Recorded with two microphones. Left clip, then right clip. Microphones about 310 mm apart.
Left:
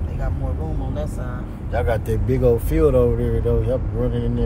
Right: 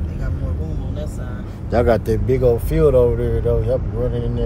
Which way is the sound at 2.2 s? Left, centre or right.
Centre.